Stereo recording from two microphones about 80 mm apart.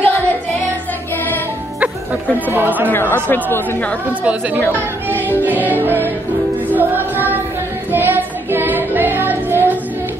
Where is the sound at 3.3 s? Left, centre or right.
Left.